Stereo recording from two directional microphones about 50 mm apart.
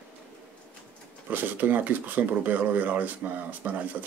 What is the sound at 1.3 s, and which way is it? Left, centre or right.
Speech, right.